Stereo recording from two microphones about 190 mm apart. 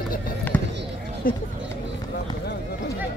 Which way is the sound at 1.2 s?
45° left (ahead or behind).